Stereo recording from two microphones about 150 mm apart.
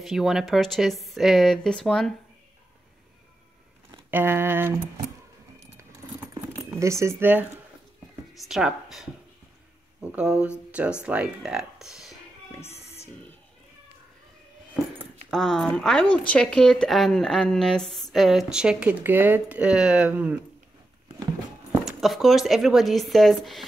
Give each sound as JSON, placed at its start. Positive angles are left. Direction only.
{"t": 0.0, "sound": "speech", "side_deg": 0}
{"t": 4.1, "sound": "speech", "side_deg": -15}
{"t": 6.7, "sound": "speech", "side_deg": -20}
{"t": 8.4, "sound": "speech", "side_deg": -5}
{"t": 12.4, "sound": "music", "side_deg": 15}
{"t": 12.7, "sound": "music", "side_deg": 45}
{"t": 15.3, "sound": "speech", "side_deg": 0}
{"t": 21.8, "sound": "speech", "side_deg": 0}